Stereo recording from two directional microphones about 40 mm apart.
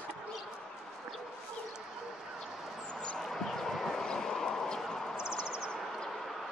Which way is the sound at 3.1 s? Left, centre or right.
Centre.